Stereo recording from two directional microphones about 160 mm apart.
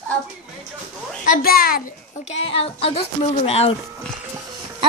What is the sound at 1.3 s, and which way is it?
Speech, 70° left (ahead or behind).